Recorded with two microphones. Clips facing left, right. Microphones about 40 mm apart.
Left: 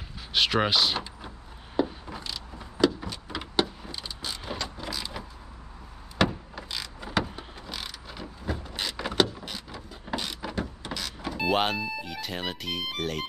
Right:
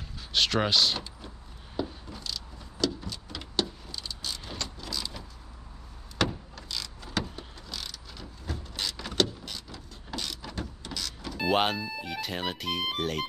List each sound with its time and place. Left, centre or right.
0.3 s speech: centre
2.0 s vehicle: left
10.5 s power windows: centre
11.3 s speech: centre